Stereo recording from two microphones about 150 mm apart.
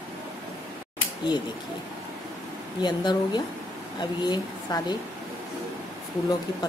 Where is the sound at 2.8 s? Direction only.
30° left (ahead or behind).